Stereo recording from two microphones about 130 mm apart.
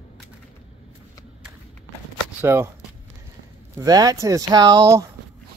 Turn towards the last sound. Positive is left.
turn(degrees=-25)  # may be behind; listen again after turning